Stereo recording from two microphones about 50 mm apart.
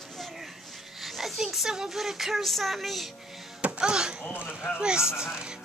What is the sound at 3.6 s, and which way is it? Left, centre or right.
Music, right.